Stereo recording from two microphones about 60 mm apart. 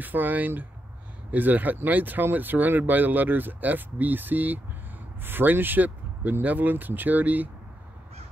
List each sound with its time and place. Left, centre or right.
0.0 s speech: right